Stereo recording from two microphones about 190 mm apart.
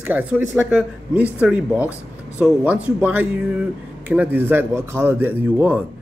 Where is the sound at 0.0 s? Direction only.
5° right (ahead or behind).